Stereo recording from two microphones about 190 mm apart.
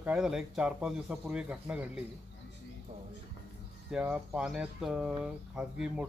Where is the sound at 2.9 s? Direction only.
40° right (ahead or behind).